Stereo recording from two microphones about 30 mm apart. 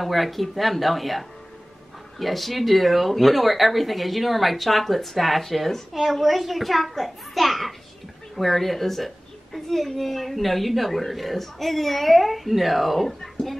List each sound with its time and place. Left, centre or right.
0.0 s a woman's voice: centre
13.2 s speech: centre